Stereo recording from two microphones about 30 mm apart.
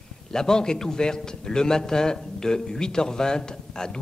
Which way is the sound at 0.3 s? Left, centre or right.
Centre.